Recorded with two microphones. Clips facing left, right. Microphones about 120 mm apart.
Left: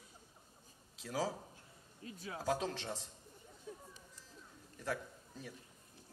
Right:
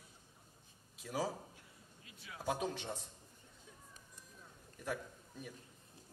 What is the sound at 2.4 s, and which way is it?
Speech, 90° left.